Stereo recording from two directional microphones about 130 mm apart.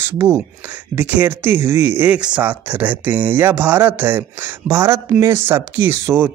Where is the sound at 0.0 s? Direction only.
20° right (ahead or behind).